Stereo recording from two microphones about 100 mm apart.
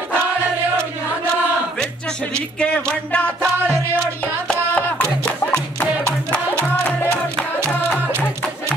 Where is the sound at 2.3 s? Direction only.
10° left (ahead or behind).